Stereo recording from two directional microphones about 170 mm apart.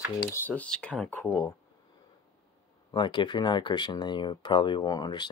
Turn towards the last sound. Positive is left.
turn(degrees=25)  # may be behind; listen again after turning